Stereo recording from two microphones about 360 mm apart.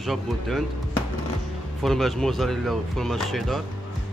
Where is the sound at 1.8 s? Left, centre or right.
Centre.